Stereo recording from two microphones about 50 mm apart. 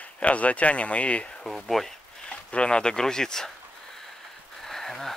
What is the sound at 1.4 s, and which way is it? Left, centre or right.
Speech, centre.